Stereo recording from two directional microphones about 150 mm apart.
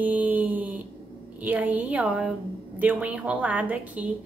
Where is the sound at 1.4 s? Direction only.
10° right (ahead or behind).